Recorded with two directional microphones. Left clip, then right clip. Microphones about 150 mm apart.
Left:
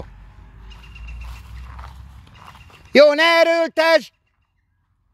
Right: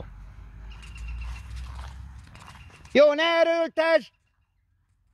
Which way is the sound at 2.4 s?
5° left (ahead or behind).